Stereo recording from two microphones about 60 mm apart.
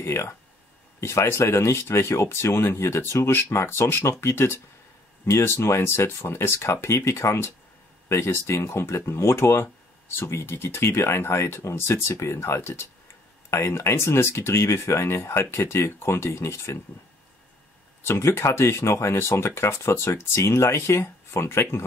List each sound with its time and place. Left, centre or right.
0.0 s speech: left
18.0 s speech: left